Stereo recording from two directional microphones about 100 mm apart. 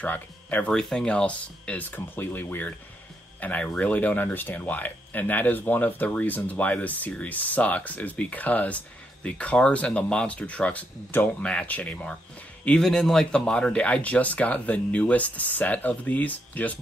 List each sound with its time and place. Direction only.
0.0 s speech: 15° left (ahead or behind)